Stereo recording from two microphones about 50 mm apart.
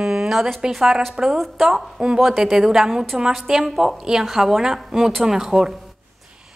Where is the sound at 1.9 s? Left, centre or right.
Centre.